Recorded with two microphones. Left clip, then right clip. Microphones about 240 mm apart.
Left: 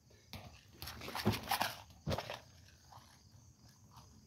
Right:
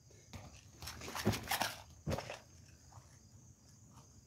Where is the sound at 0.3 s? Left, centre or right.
Left.